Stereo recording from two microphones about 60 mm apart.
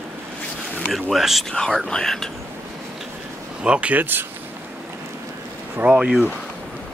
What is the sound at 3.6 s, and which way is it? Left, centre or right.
Speech, right.